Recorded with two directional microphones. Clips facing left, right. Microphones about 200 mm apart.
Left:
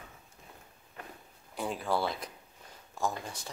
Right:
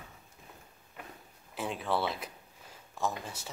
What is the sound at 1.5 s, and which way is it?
Speech, centre (ahead or behind).